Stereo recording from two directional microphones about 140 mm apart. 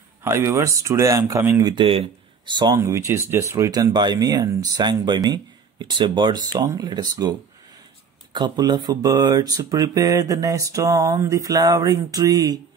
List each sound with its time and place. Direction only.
0.2 s speech: 20° right (ahead or behind)